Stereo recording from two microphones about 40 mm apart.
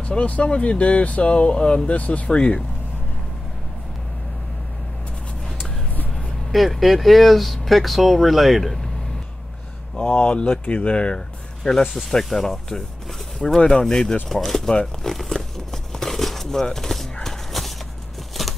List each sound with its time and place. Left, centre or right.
0.0 s speech: left
1.5 s speech: left
1.9 s speech: left
2.3 s speech: left
6.5 s speech: centre
10.0 s speech: left
10.5 s speech: left
11.0 s a sound: left
12.3 s speech: centre
15.0 s a sound: centre